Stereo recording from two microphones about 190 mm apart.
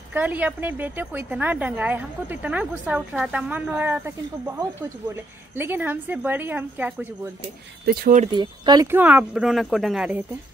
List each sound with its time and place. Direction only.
0.1 s a woman's voice: 10° right (ahead or behind)
7.8 s speech: 55° right (ahead or behind)
8.3 s a woman's voice: 25° right (ahead or behind); by 10.2 s 5° right (ahead or behind)